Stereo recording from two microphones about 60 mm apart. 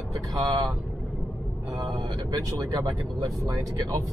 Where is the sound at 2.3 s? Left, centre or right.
Right.